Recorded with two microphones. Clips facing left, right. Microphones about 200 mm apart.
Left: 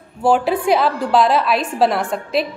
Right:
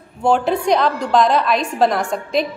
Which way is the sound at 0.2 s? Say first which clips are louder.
Left 1 dB; 5° left (ahead or behind).